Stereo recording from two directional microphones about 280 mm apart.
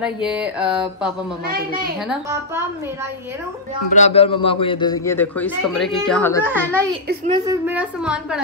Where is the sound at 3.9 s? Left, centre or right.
Left; by 6.4 s centre.